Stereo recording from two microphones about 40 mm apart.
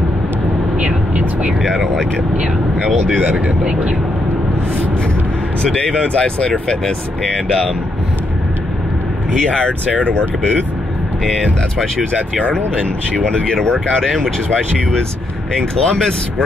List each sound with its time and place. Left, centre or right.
3.2 s speech: right
6.1 s speech: left
9.5 s speech: left
9.9 s speech: left
12.4 s speech: left
13.8 s speech: centre